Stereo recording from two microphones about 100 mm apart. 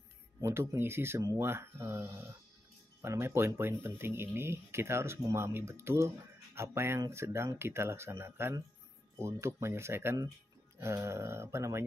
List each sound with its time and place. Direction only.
0.4 s speech: 30° right (ahead or behind)